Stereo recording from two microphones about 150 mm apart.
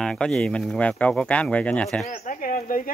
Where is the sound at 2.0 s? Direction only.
55° left (ahead or behind).